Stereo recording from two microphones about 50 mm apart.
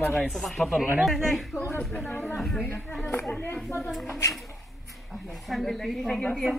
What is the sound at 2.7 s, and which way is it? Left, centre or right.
Speech, left.